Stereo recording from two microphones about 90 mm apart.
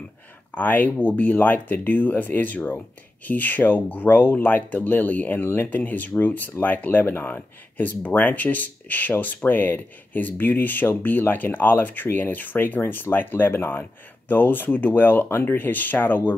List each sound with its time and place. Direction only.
0.6 s speech: 20° left (ahead or behind)